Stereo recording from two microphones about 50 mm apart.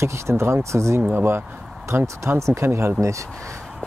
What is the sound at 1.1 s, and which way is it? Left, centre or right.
Speech, right.